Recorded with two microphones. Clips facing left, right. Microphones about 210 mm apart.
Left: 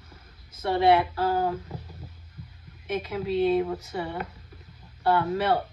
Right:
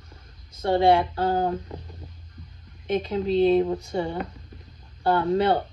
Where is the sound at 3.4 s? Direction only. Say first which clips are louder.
Right 4 dB; 25° right (ahead or behind).